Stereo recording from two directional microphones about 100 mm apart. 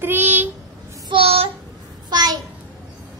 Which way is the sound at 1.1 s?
70° right (ahead or behind).